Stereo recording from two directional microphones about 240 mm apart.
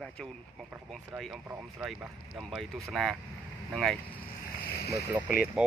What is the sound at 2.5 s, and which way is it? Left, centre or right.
Speech, centre.